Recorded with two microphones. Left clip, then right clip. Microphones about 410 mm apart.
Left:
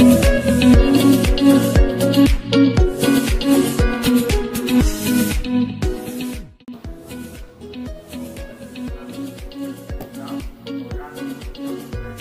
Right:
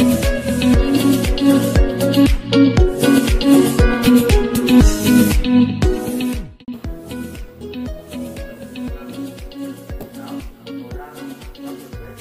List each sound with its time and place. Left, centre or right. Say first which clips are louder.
0.0 s music: left 4 dB; left; by 6.2 s right
7.7 s music: right 3 dB; right
8.7 s music: right 1 dB; centre
10.2 s music: left 3 dB; centre